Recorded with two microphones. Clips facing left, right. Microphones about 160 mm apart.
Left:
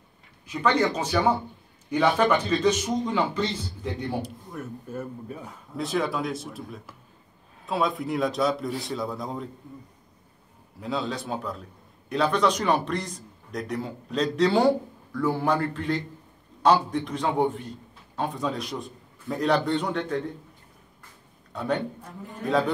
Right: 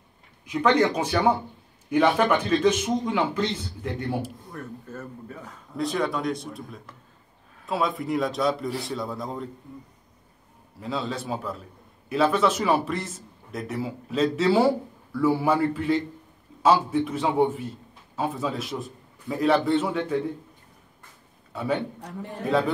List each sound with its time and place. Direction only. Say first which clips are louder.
0.5 s a man's voice: right 3 dB; 10° right (ahead or behind)
4.5 s speech: left 2 dB; 15° left (ahead or behind)
5.7 s a man's voice: right 1 dB; centre (ahead or behind)
10.8 s a man's voice: even; centre (ahead or behind)
21.5 s a man's voice: right 1 dB; 5° right (ahead or behind)
22.0 s a man's voice: right 5 dB; 75° right (ahead or behind)
22.4 s a man's voice: right 1 dB; centre (ahead or behind)